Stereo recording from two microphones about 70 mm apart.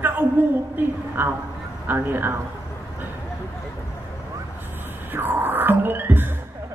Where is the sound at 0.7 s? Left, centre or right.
Right.